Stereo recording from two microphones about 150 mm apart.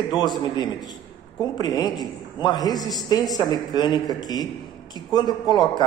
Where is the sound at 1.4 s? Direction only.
25° left (ahead or behind).